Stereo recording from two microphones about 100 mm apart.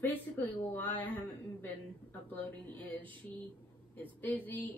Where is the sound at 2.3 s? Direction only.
20° left (ahead or behind).